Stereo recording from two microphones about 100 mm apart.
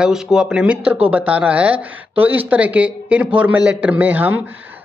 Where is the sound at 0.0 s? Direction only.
5° right (ahead or behind).